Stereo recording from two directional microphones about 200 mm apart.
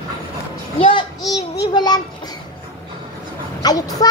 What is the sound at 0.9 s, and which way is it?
Child singing, 20° left (ahead or behind).